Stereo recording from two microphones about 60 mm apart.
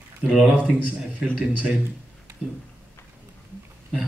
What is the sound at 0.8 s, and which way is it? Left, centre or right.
Speech, right.